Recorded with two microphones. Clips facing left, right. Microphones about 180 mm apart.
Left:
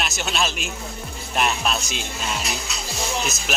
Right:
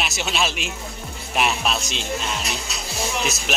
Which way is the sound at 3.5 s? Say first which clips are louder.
Even; 5° left (ahead or behind).